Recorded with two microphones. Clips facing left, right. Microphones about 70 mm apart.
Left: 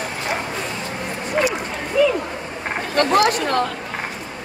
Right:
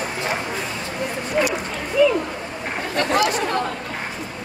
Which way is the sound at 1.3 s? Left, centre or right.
Left.